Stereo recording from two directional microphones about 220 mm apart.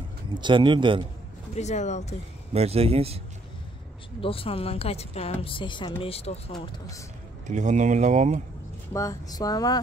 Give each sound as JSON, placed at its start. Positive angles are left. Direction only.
{"t": 0.4, "sound": "speech", "side_deg": -20}
{"t": 1.5, "sound": "speech", "side_deg": 30}
{"t": 2.5, "sound": "speech", "side_deg": -30}
{"t": 4.2, "sound": "speech", "side_deg": 25}
{"t": 7.4, "sound": "speech", "side_deg": -35}
{"t": 8.9, "sound": "speech", "side_deg": 15}